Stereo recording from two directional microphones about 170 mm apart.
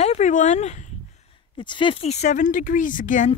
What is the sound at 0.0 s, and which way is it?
Speech, 45° left (ahead or behind).